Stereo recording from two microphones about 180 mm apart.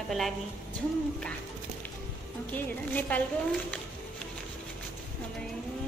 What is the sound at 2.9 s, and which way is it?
Speech, 10° left (ahead or behind).